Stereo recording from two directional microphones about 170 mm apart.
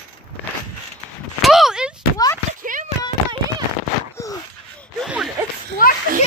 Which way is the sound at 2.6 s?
50° right (ahead or behind).